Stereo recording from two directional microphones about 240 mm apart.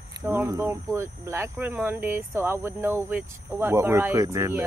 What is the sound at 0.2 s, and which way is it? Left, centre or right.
Speech, centre.